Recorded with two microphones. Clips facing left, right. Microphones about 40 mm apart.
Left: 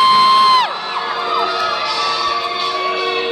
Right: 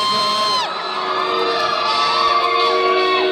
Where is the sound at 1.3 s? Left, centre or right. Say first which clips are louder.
Left 3 dB; centre.